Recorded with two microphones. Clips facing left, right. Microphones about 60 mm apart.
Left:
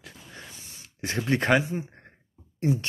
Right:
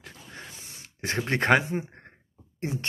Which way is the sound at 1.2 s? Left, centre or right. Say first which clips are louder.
Even; right.